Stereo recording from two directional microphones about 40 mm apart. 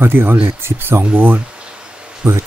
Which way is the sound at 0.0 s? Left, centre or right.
Right.